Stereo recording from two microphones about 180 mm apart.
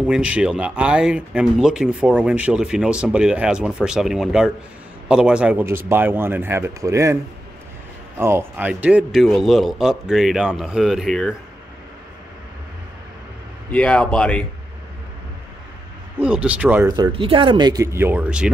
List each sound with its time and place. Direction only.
0.0 s a man's voice: 5° right (ahead or behind)
8.2 s speech: 15° right (ahead or behind); by 11.3 s 5° left (ahead or behind)
13.7 s speech: 5° left (ahead or behind)
16.2 s a man's voice: 5° right (ahead or behind)
16.9 s speech: 30° right (ahead or behind); by 18.5 s 5° right (ahead or behind)